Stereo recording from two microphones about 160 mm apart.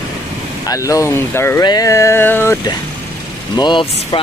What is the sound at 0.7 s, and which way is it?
Speech, 20° left (ahead or behind).